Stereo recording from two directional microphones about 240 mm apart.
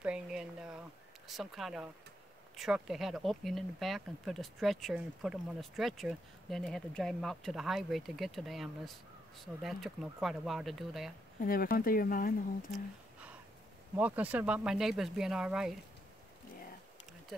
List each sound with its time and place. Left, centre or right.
0.0 s a sound: centre
1.2 s speech: centre
11.3 s speech: left
13.9 s speech: centre